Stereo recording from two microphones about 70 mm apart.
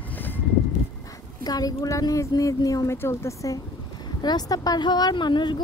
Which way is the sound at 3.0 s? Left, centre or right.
Left.